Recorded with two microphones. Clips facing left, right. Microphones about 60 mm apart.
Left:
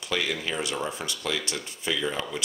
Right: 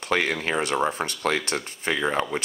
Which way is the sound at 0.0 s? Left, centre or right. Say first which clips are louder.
Right 5 dB; right.